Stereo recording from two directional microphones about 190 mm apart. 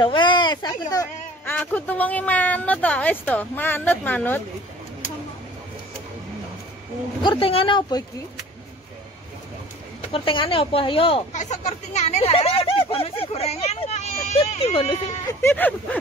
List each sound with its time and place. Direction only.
0.0 s speech: 25° left (ahead or behind)
1.5 s a woman's voice: 10° left (ahead or behind)
7.2 s speech: 30° left (ahead or behind)
10.1 s speech: 25° left (ahead or behind)
15.4 s a woman's voice: 10° left (ahead or behind)